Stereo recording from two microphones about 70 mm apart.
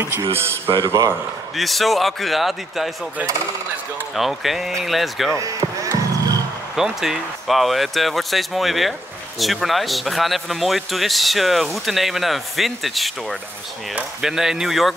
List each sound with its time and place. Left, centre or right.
0.0 s speech: right
1.6 s speech: centre
4.1 s speech: centre
5.3 s basketball bounce: right
6.7 s speech: centre